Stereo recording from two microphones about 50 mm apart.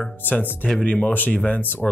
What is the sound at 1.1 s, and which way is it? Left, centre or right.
Speech, left.